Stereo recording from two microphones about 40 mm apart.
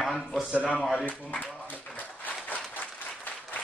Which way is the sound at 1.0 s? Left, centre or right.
Left.